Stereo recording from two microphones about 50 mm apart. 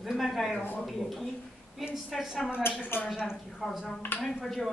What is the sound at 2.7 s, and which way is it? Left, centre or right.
Speech, left.